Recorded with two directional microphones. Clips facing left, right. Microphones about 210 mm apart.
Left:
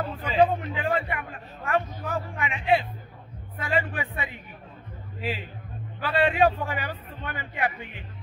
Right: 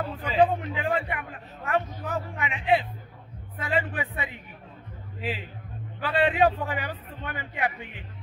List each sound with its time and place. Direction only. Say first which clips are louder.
0.0 s a sound: even; centre (ahead or behind)
0.5 s a man's voice: left 1 dB; 15° right (ahead or behind)
5.9 s a man's voice: even; 20° right (ahead or behind)